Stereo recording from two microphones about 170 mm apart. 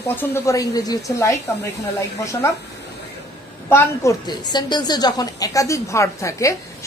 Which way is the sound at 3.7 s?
20° left (ahead or behind).